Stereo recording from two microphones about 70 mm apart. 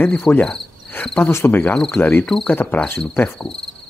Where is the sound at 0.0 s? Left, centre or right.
Left.